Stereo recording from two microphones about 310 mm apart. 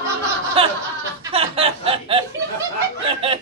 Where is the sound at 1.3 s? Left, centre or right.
Centre.